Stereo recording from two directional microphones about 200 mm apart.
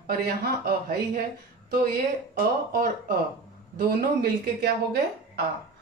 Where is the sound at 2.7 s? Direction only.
45° right (ahead or behind).